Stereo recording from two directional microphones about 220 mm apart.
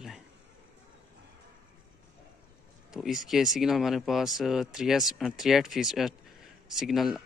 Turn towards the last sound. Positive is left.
turn(degrees=0)  # may be behind; listen again after turning